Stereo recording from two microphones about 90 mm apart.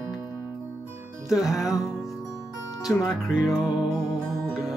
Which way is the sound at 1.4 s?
5° right (ahead or behind).